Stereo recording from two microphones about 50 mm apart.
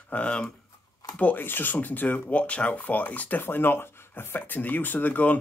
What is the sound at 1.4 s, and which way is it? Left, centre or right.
Speech, left.